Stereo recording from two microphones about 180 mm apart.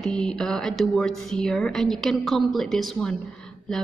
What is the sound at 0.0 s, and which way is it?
Speech, centre (ahead or behind).